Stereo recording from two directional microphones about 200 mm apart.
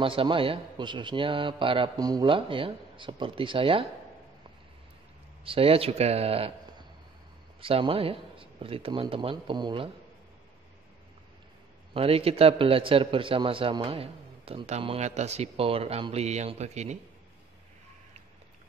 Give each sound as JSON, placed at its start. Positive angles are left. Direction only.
{"t": 0.0, "sound": "a man's voice", "side_deg": -25}
{"t": 5.4, "sound": "a man's voice", "side_deg": -30}
{"t": 11.9, "sound": "a man's voice", "side_deg": -30}